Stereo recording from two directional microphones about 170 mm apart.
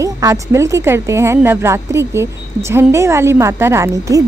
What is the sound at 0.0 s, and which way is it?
Speech, 20° right (ahead or behind).